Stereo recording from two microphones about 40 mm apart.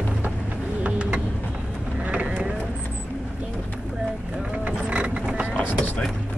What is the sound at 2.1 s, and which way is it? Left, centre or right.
Mechanisms, right.